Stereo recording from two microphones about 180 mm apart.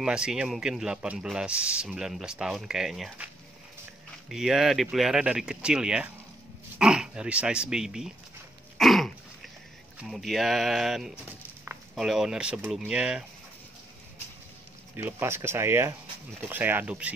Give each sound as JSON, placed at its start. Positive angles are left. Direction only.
{"t": 0.0, "sound": "speech", "side_deg": -5}
{"t": 4.3, "sound": "speech", "side_deg": 0}
{"t": 8.7, "sound": "a sound", "side_deg": 0}
{"t": 9.9, "sound": "speech", "side_deg": 0}
{"t": 15.0, "sound": "speech", "side_deg": -10}